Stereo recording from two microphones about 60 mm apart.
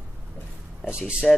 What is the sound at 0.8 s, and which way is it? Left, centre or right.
Speech, centre.